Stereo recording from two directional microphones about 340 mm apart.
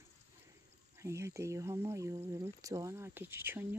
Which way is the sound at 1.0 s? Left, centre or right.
Centre.